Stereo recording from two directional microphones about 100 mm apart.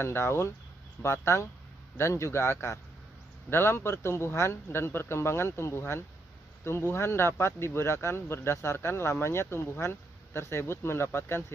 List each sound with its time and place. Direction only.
0.0 s speech: 25° left (ahead or behind)